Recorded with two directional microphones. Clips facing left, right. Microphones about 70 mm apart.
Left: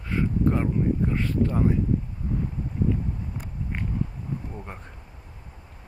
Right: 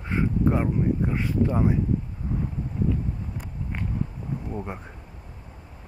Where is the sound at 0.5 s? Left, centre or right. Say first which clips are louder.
Even; centre.